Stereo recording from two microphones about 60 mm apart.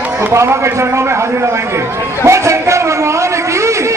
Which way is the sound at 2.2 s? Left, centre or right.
Right.